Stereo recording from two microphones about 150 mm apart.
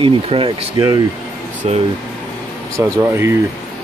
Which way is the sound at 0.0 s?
35° right (ahead or behind).